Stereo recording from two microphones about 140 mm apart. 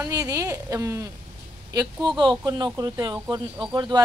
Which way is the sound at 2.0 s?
35° right (ahead or behind).